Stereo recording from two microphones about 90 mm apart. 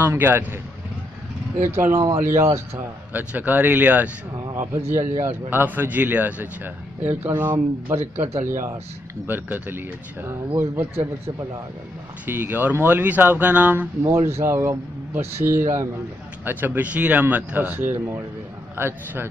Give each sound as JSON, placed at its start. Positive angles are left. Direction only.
{"t": 0.0, "sound": "a man's voice", "side_deg": -25}
{"t": 1.8, "sound": "speech", "side_deg": -35}
{"t": 3.1, "sound": "a man's voice", "side_deg": -20}
{"t": 4.6, "sound": "a man's voice", "side_deg": -30}
{"t": 12.3, "sound": "a man's voice", "side_deg": -20}
{"t": 14.0, "sound": "a man's voice", "side_deg": -35}